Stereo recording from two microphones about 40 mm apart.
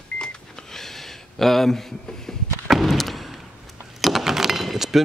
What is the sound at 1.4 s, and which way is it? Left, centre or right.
Speech, centre.